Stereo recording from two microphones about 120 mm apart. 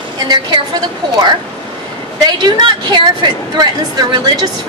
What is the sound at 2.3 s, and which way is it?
A woman's voice, 35° right (ahead or behind).